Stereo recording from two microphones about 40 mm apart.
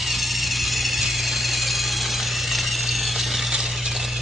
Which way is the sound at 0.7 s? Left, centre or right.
Centre.